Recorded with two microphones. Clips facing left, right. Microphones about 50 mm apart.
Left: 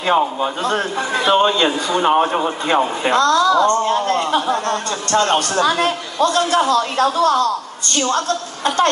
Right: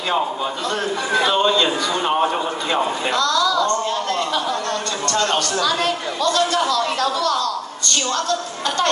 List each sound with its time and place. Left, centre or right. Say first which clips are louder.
0.7 s speech: left 2 dB; left
1.3 s speech: left 3 dB; left
2.7 s speech: left 5 dB; left